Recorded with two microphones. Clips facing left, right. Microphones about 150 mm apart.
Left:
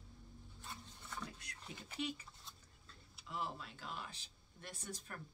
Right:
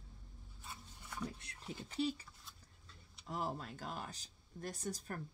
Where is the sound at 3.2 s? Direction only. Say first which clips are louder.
Right 3 dB; 45° right (ahead or behind).